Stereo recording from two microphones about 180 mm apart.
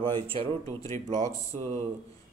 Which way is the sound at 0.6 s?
20° left (ahead or behind).